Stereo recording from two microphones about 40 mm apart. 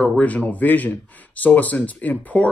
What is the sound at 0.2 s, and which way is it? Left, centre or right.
A man's voice, left.